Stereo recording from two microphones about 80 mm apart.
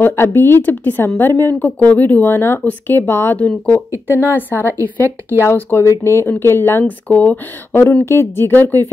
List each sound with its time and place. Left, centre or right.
0.0 s speech: left
5.0 s speech: right
5.5 s speech: left
7.1 s speech: centre
7.9 s speech: left